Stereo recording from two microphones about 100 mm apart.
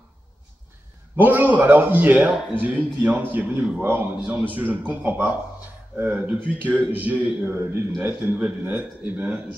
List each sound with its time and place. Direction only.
1.1 s a man's voice: 20° right (ahead or behind)